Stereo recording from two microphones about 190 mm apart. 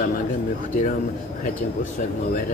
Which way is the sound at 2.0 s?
45° left (ahead or behind).